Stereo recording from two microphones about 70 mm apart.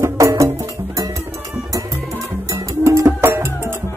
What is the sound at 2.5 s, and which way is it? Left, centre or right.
Music, right.